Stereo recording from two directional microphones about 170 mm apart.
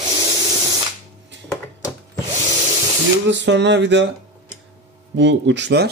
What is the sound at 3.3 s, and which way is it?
Speech, 90° right.